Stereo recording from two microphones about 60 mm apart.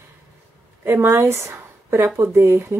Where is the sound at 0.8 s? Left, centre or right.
Right.